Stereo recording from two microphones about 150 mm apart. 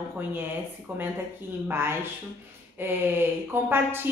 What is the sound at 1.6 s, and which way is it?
A woman's voice, 15° right (ahead or behind).